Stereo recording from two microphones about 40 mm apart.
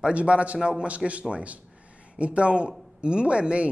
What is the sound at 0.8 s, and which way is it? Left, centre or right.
A man's voice, right.